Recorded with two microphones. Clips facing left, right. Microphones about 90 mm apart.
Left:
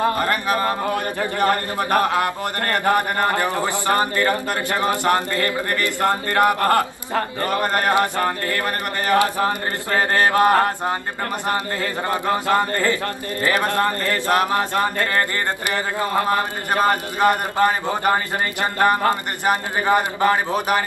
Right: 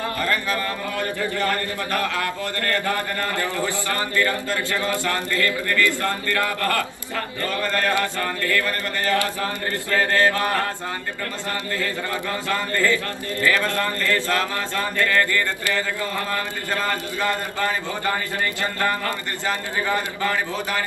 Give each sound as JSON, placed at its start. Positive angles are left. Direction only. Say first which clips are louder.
{"t": 0.0, "sound": "a man's voice", "louder": "left 5 dB", "side_deg": 20}